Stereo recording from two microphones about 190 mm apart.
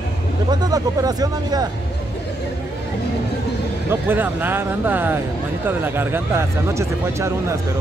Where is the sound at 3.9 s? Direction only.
10° right (ahead or behind).